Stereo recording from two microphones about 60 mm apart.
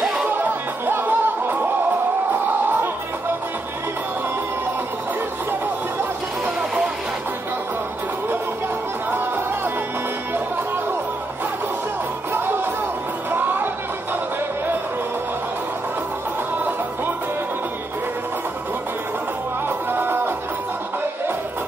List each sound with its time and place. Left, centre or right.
0.4 s music: right
9.1 s music: right
12.3 s music: right
13.3 s chatter: right
19.9 s music: right